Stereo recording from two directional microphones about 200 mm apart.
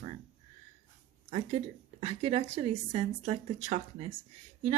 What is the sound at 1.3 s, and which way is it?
A woman's voice, 30° right (ahead or behind).